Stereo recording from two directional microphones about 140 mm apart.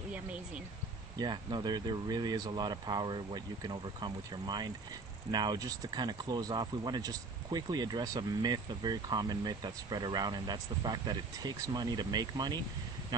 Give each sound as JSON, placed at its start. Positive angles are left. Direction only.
{"t": 1.1, "sound": "speech", "side_deg": -30}